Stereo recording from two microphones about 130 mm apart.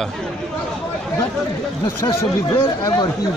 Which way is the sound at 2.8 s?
30° left (ahead or behind).